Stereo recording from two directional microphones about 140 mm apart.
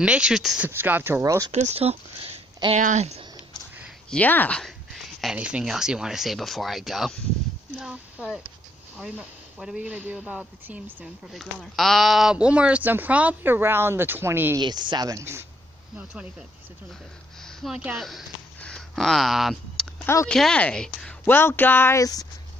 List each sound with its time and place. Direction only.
0.0 s speech: 5° right (ahead or behind)
0.7 s speech: 15° right (ahead or behind)
1.2 s speech: 25° right (ahead or behind)
1.5 s speech: 50° right (ahead or behind)
4.1 s speech: 10° left (ahead or behind)
7.7 s a sound: 5° right (ahead or behind)
8.9 s speech: 5° right (ahead or behind)
11.3 s speech: centre (ahead or behind); by 14.6 s 15° right (ahead or behind)
14.6 s speech: 30° right (ahead or behind)
16.0 s speech: 10° right (ahead or behind)
17.4 s a sound: 5° left (ahead or behind)
17.7 s speech: 5° right (ahead or behind)
18.6 s a sound: 5° left (ahead or behind)
20.2 s speech: 5° left (ahead or behind); by 22.3 s 25° left (ahead or behind)